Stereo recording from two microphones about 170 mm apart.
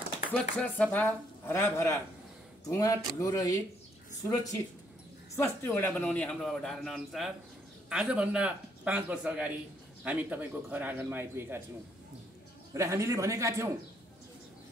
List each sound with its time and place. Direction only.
0.3 s speech: 5° left (ahead or behind)
5.3 s a man's voice: 15° left (ahead or behind); by 11.6 s 15° right (ahead or behind)
12.7 s speech: 15° right (ahead or behind)